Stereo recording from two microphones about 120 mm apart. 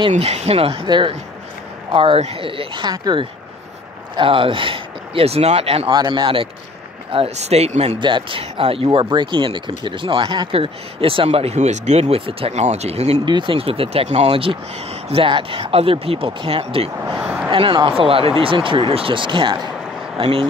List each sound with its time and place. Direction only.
0.2 s speech: 60° right (ahead or behind)
0.8 s speech: 40° right (ahead or behind); by 5.9 s 55° right (ahead or behind)
5.9 s speech: 40° right (ahead or behind)
7.1 s speech: 60° right (ahead or behind)
8.0 s speech: 45° right (ahead or behind); by 13.2 s 65° right (ahead or behind)
13.2 s speech: 40° right (ahead or behind)
17.2 s speech: 15° right (ahead or behind)
17.5 s speech: 45° right (ahead or behind)